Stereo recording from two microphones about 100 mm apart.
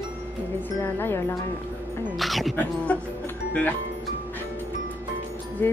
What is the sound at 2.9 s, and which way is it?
Speech, 15° left (ahead or behind).